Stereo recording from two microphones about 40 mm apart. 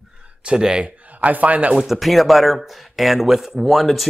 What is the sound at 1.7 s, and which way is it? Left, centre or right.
Speech, centre.